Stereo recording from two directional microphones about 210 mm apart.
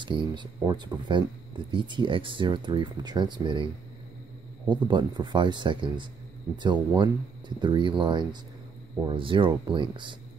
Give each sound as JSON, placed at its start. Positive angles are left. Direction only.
{"t": 0.0, "sound": "speech", "side_deg": -20}
{"t": 4.6, "sound": "speech", "side_deg": -20}